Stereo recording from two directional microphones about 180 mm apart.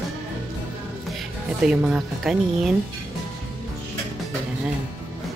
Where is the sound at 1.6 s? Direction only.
5° right (ahead or behind).